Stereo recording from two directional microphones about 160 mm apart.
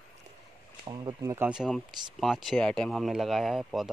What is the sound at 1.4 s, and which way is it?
Speech, 5° right (ahead or behind).